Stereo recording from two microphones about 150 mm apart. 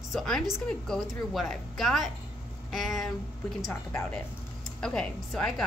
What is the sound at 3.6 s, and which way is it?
A woman's voice, 15° left (ahead or behind).